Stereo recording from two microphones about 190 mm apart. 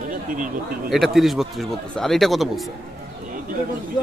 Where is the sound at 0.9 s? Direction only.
Centre (ahead or behind).